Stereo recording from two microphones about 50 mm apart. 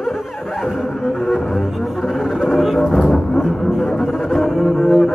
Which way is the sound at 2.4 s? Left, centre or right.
Centre.